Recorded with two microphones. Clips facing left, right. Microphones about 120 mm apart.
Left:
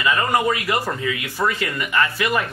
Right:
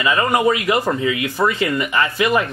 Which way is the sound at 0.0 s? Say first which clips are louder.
Right 3 dB; 20° right (ahead or behind).